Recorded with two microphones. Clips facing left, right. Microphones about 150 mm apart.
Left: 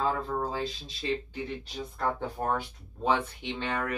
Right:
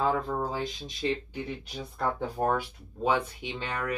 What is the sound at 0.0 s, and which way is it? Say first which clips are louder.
Speech: right 2 dB; 15° right (ahead or behind).